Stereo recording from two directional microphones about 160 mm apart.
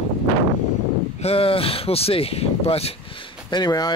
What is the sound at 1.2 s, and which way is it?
Speech, 35° left (ahead or behind).